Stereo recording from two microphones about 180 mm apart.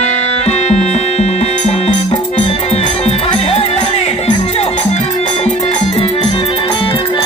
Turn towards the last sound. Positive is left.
turn(degrees=30)  # may be behind; listen again after turning